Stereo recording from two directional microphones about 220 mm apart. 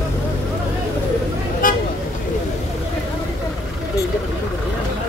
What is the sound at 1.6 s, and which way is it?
Vehicle, 40° left (ahead or behind).